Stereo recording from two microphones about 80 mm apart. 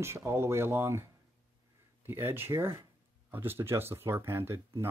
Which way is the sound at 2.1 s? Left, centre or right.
Right.